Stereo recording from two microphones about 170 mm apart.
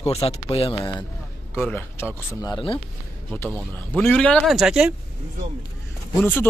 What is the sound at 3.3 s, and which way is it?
Speech, 5° left (ahead or behind).